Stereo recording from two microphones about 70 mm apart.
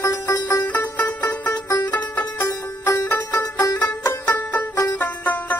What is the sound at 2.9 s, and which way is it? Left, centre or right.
Music, left.